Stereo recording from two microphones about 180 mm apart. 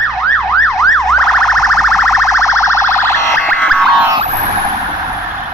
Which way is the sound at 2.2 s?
15° left (ahead or behind).